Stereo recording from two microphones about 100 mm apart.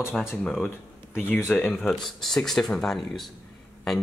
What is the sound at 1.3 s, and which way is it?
Speech, 15° left (ahead or behind).